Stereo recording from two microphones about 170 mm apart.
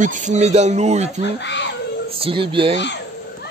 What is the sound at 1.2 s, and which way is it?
Speech, 90° left.